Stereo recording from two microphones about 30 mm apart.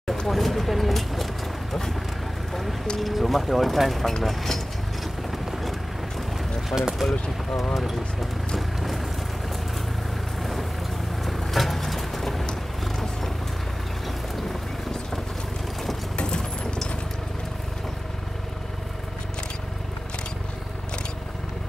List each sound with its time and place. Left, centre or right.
0.3 s vehicle: centre
3.0 s speech: centre
6.7 s speech: right
7.7 s speech: centre
8.5 s vehicle: centre
10.4 s vehicle: centre
14.0 s boat: centre